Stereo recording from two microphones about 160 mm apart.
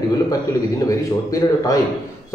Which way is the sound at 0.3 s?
20° left (ahead or behind).